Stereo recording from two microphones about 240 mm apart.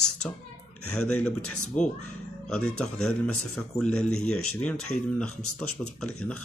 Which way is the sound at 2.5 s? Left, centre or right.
Centre.